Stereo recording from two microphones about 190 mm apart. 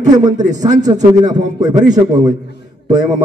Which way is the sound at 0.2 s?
20° right (ahead or behind).